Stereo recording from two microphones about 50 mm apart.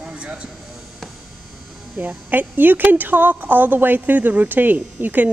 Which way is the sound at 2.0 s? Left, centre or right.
Right.